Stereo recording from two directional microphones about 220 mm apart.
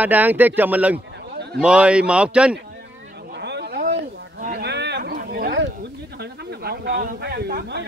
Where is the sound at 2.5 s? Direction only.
45° right (ahead or behind).